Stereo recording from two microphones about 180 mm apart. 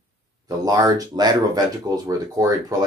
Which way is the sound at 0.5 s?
20° right (ahead or behind).